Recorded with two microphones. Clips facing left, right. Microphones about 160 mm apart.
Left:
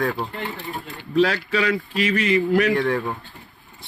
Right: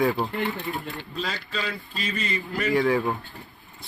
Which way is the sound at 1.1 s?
75° left (ahead or behind).